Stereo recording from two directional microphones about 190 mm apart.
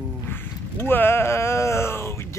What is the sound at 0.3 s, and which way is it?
Groan, 10° left (ahead or behind).